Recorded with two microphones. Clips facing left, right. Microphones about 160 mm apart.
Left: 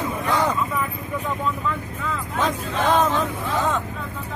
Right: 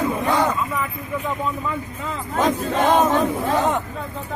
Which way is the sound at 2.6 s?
40° right (ahead or behind).